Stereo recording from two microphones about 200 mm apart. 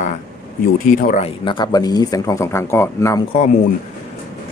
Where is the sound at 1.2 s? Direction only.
25° left (ahead or behind).